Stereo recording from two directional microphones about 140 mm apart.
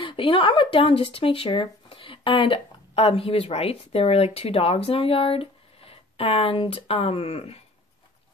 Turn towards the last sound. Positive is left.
turn(degrees=45)  # may be behind; listen again after turning